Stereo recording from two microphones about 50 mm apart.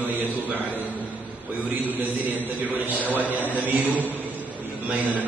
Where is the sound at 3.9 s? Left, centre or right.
Left.